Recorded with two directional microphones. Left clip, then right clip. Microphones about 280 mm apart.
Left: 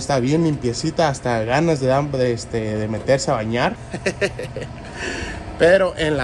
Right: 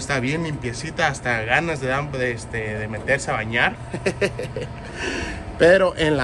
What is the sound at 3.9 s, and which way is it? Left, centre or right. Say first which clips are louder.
Speech: left 1 dB; centre.